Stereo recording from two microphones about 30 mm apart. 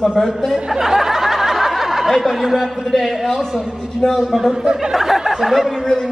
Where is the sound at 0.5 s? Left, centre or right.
Centre.